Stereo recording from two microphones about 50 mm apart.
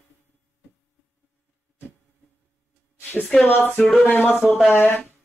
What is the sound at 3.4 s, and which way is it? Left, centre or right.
Speech, left.